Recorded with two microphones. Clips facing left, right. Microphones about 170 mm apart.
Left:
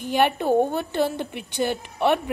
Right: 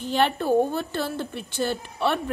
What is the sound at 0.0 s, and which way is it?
Speech, 10° left (ahead or behind).